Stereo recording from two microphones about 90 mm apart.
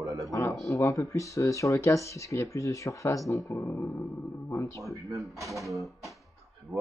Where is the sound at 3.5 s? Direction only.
25° left (ahead or behind).